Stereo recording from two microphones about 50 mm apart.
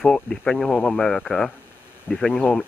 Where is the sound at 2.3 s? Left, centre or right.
Left.